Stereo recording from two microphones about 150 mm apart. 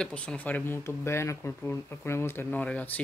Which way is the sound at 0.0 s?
5° left (ahead or behind).